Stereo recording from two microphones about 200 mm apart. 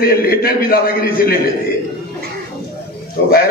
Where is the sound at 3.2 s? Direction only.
50° left (ahead or behind).